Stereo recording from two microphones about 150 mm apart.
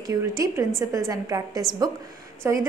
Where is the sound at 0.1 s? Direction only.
20° right (ahead or behind).